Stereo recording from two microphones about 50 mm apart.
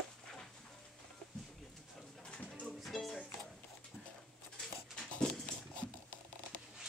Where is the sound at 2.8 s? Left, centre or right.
Centre.